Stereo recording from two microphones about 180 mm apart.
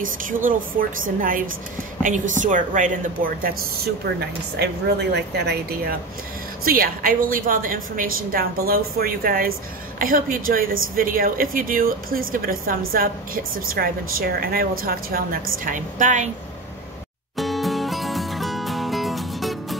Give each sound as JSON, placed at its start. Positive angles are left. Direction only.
{"t": 0.0, "sound": "a woman's voice", "side_deg": -50}
{"t": 17.4, "sound": "music", "side_deg": 0}